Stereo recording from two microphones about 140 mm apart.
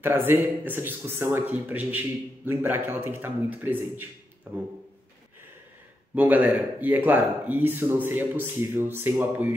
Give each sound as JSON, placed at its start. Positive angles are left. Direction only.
{"t": 0.0, "sound": "speech", "side_deg": -15}
{"t": 6.1, "sound": "speech", "side_deg": -10}